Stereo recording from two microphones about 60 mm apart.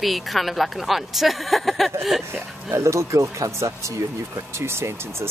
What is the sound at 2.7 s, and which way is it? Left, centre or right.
Speech, right.